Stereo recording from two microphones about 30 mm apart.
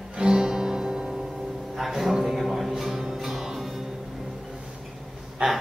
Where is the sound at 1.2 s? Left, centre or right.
Centre.